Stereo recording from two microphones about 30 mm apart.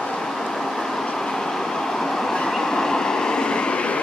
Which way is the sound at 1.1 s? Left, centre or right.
Centre.